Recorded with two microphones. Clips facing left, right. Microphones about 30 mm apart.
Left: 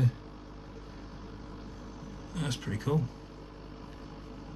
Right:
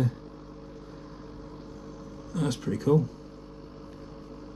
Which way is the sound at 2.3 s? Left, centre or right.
Left.